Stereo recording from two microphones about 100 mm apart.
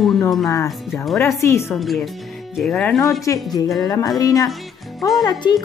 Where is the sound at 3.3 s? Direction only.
30° left (ahead or behind).